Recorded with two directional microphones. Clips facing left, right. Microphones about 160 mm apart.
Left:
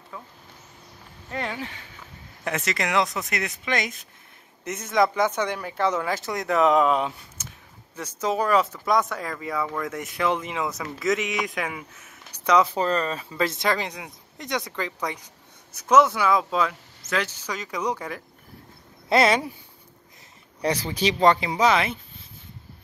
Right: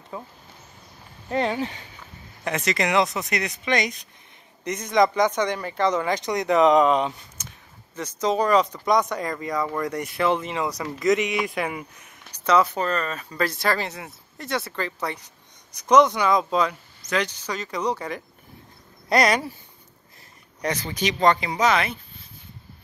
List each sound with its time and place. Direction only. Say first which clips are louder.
0.1 s speech: right 5 dB; 25° right (ahead or behind)
1.3 s speech: right 7 dB; 25° right (ahead or behind)
2.4 s speech: right 3 dB; centre (ahead or behind)
12.6 s speech: left 2 dB; 30° left (ahead or behind); by 17.9 s 10° left (ahead or behind)
19.0 s speech: left 1 dB; 25° left (ahead or behind)
21.1 s speech: left 1 dB; 10° left (ahead or behind)